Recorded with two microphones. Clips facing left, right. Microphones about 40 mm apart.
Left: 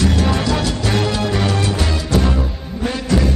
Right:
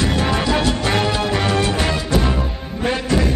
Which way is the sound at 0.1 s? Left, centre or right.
Right.